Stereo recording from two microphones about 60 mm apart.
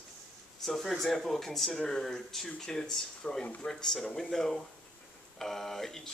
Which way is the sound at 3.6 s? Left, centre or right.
Centre.